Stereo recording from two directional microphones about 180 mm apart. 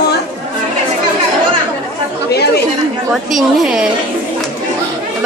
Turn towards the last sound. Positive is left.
turn(degrees=0)  # may be behind; listen again after turning